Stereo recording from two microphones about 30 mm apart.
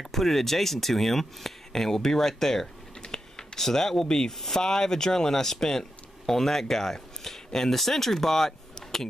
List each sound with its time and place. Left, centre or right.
0.1 s speech: centre
3.0 s typing: centre
4.6 s speech: centre